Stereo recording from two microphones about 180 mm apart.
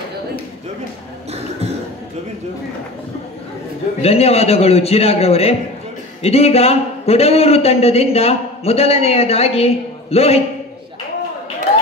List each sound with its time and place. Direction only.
4.0 s speech: 35° left (ahead or behind)